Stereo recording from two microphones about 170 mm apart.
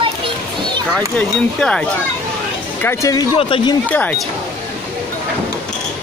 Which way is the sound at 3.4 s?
30° left (ahead or behind).